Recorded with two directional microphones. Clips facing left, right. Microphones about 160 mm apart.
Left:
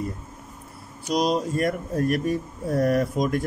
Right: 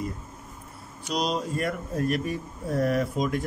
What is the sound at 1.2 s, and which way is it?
Speech, 40° left (ahead or behind).